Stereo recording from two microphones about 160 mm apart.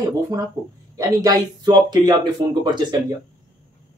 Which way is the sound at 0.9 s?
25° right (ahead or behind).